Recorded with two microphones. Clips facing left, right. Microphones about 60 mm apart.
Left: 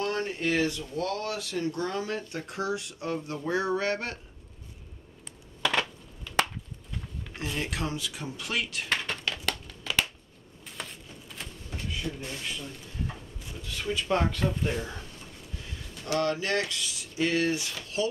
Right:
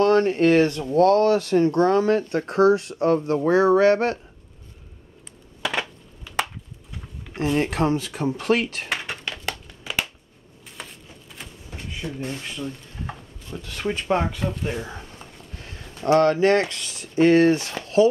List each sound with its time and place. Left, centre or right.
0.0 s speech: right
5.6 s a sound: centre
7.5 s speech: right
8.8 s crumpling: centre
10.8 s a sound: centre
12.0 s speech: right
13.6 s speech: right
14.0 s speech: centre
15.6 s speech: right